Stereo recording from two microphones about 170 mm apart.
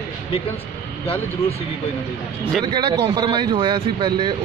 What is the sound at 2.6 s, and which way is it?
Speech, 25° right (ahead or behind).